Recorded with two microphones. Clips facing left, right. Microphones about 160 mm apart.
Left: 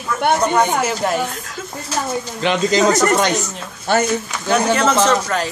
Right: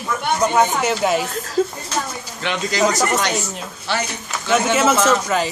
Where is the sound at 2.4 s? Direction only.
20° left (ahead or behind).